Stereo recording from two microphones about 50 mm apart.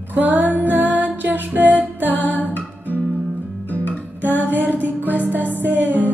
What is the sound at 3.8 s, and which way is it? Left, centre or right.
Music, left.